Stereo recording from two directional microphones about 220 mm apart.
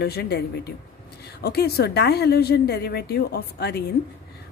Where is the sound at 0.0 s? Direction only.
45° left (ahead or behind).